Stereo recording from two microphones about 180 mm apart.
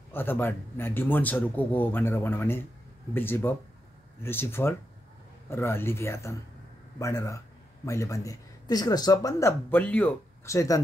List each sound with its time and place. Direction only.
0.1 s a man's voice: 10° left (ahead or behind)